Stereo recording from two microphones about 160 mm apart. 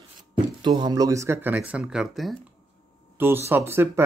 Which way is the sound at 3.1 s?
15° right (ahead or behind).